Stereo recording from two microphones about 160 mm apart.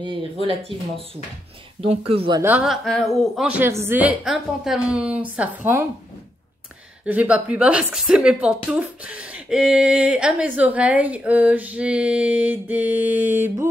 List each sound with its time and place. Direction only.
0.0 s speech: 35° right (ahead or behind)
2.4 s a woman's voice: 5° right (ahead or behind)
3.3 s a woman's voice: 10° right (ahead or behind)
7.1 s a woman's voice: 10° right (ahead or behind)